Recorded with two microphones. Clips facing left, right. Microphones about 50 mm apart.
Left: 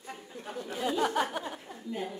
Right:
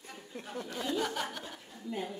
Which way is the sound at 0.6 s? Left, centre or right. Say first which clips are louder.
Left 5 dB; centre.